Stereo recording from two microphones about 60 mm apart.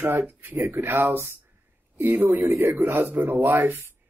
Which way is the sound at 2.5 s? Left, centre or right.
Right.